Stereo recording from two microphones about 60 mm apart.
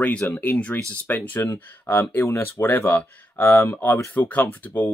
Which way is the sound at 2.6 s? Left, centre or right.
Left.